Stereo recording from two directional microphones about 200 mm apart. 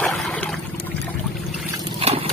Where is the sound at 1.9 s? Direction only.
30° right (ahead or behind).